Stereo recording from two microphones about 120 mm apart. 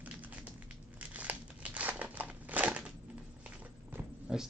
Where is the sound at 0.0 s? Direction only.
15° right (ahead or behind).